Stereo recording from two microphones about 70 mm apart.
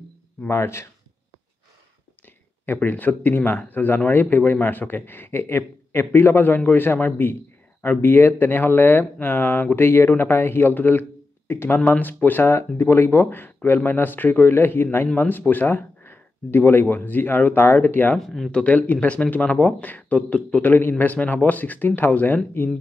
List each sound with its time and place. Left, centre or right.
0.5 s speech: left
2.6 s speech: left
18.1 s speech: centre
18.6 s speech: centre
20.6 s speech: left